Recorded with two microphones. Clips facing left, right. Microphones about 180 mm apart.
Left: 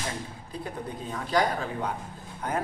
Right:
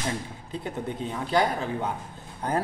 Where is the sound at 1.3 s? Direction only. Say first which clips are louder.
Right 1 dB; 25° right (ahead or behind).